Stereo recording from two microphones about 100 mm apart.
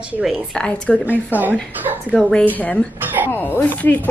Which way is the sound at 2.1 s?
5° left (ahead or behind).